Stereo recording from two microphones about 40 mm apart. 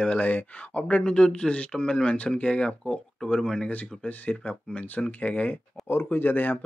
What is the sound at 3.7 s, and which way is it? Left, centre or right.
Speech, left.